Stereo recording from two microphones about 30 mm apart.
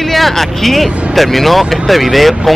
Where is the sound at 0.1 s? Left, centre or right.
Centre.